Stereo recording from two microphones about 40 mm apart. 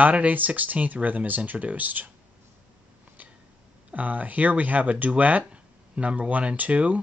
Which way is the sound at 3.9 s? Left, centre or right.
Right.